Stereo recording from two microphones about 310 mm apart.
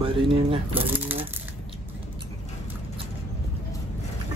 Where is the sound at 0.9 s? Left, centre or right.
Centre.